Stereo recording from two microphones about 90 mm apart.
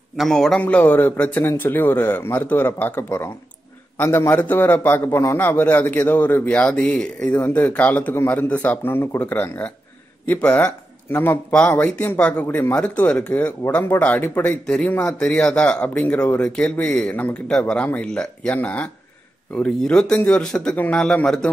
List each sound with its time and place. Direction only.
0.2 s a man's voice: 5° left (ahead or behind)
0.6 s a man's voice: 15° left (ahead or behind)
20.7 s a man's voice: 20° left (ahead or behind)